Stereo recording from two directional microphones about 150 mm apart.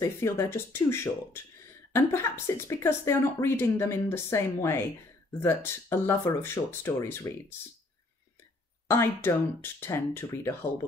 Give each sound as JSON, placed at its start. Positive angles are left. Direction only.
{"t": 0.0, "sound": "speech", "side_deg": 20}
{"t": 8.8, "sound": "speech", "side_deg": 15}